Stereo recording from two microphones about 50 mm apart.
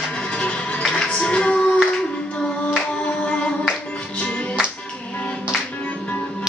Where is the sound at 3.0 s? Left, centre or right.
Left.